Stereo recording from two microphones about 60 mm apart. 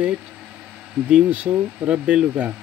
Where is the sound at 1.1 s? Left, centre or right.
Centre.